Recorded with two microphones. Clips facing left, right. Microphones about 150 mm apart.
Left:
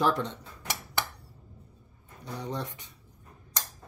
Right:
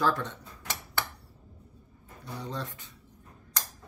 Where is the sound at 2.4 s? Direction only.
15° left (ahead or behind).